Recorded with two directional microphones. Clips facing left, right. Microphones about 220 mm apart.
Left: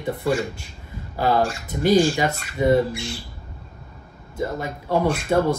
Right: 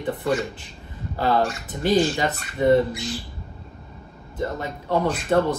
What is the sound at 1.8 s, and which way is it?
Speech, 10° left (ahead or behind).